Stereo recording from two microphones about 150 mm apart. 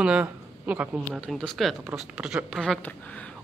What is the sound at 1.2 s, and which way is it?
A man's voice, 5° left (ahead or behind).